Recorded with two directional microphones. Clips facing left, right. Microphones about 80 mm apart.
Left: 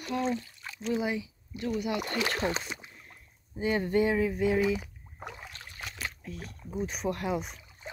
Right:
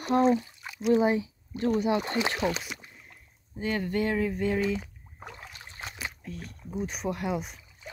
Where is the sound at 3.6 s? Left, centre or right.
Centre.